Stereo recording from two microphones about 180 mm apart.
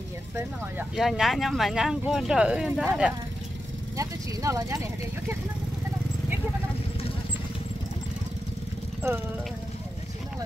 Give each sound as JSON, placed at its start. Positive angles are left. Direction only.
{"t": 0.9, "sound": "speech", "side_deg": 0}
{"t": 3.9, "sound": "speech", "side_deg": -15}